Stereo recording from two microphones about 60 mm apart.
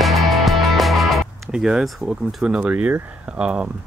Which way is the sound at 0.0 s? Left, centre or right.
Centre.